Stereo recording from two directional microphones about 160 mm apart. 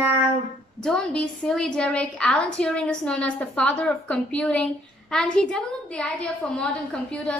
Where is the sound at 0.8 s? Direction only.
5° left (ahead or behind).